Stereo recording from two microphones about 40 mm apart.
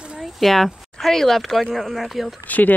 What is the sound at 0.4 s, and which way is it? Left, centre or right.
Speech, centre.